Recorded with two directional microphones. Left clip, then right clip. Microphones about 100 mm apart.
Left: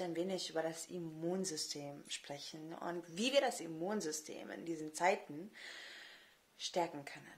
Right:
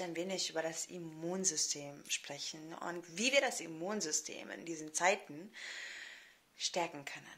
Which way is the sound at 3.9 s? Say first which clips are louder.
Right 3 dB; 40° left (ahead or behind).